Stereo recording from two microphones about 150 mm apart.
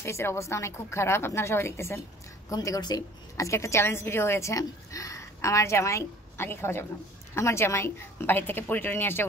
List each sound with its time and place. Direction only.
0.0 s a woman's voice: 15° left (ahead or behind)